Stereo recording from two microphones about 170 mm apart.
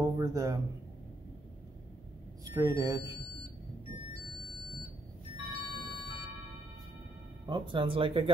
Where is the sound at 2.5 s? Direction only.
20° right (ahead or behind).